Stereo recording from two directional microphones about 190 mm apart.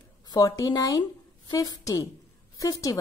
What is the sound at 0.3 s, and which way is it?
A woman's voice, 20° left (ahead or behind).